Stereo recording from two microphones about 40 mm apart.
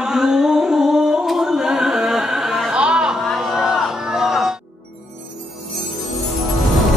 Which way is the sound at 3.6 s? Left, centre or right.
Centre.